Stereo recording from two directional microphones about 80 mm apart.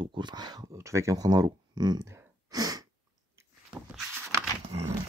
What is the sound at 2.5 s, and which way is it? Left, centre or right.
Sneeze, right.